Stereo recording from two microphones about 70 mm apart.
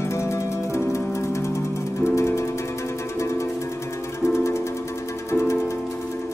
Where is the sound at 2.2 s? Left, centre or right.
Left.